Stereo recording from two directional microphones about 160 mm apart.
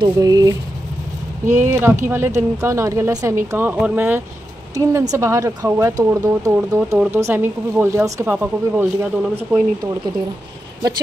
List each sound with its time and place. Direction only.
0.0 s speech: 25° right (ahead or behind)